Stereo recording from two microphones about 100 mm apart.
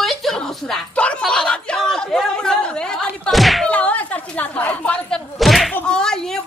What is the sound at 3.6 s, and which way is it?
Speech, 15° left (ahead or behind).